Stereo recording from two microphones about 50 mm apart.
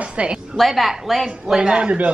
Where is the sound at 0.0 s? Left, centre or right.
Right.